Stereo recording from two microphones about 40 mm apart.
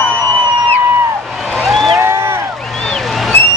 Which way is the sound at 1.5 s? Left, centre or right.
Centre.